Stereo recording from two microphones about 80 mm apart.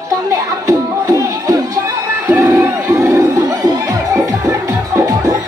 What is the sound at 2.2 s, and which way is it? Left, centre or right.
Crowd, right.